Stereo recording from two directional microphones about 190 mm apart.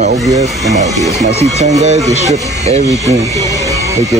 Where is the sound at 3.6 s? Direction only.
15° right (ahead or behind).